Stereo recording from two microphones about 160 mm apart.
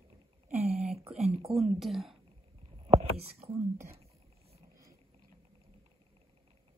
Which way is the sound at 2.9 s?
40° right (ahead or behind).